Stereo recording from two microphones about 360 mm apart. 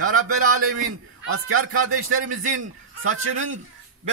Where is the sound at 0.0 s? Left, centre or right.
Right.